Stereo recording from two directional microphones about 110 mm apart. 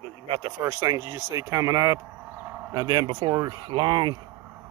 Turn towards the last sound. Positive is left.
turn(degrees=-45)  # may be behind; listen again after turning